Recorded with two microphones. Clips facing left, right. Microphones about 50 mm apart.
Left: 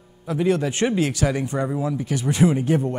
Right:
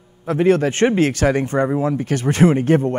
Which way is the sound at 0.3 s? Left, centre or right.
Right.